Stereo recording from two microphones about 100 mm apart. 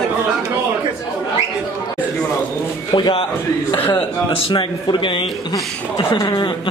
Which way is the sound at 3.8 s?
20° left (ahead or behind).